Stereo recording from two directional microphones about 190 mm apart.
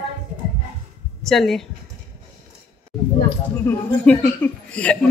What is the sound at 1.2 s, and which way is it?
Speech, centre (ahead or behind).